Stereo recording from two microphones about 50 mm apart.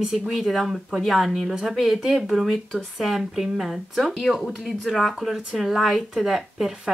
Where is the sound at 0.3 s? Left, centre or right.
Centre.